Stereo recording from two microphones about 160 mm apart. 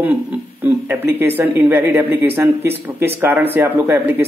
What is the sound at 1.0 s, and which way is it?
Speech, 15° right (ahead or behind).